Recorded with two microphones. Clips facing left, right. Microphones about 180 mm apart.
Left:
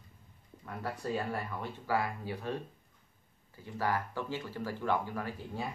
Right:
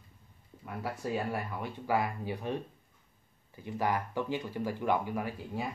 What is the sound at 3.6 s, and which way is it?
Speech, 15° right (ahead or behind).